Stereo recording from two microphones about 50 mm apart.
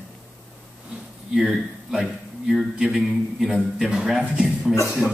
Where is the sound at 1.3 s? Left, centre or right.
Centre.